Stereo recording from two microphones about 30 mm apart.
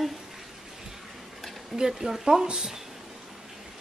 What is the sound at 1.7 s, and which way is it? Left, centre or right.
Speech, centre.